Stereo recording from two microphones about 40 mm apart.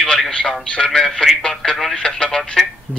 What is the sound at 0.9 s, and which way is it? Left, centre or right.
Speech, centre.